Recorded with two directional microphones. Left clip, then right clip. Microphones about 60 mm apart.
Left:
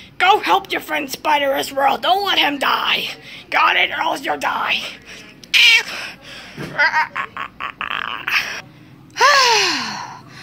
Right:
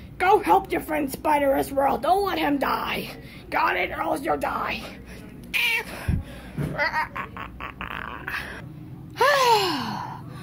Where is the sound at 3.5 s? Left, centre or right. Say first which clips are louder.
Left 8 dB; centre.